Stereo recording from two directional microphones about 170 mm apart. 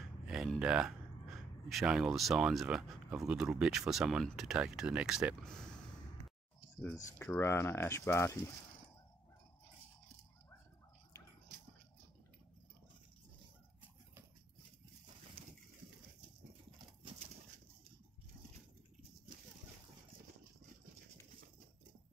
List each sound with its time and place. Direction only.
0.0 s speech: centre (ahead or behind)
6.8 s speech: 10° left (ahead or behind)
15.4 s a sound: 35° right (ahead or behind)